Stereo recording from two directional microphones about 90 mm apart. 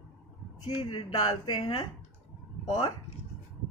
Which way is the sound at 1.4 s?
55° left (ahead or behind).